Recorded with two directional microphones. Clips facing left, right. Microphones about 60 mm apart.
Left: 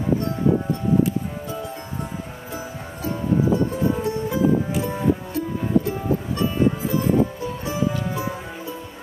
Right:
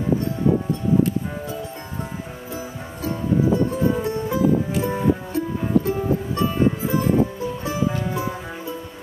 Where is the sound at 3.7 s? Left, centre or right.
Right.